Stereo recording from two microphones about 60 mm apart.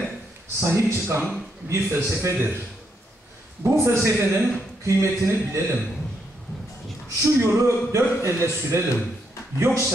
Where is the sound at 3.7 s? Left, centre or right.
Right.